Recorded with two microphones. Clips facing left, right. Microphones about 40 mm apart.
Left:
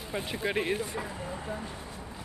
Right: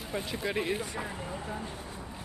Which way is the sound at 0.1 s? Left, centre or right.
Left.